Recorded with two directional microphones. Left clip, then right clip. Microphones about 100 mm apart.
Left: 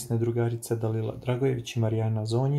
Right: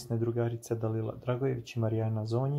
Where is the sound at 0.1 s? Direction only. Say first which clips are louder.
Left 4 dB; 30° right (ahead or behind).